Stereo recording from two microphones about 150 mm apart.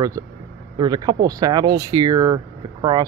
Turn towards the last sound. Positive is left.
turn(degrees=-25)  # may be behind; listen again after turning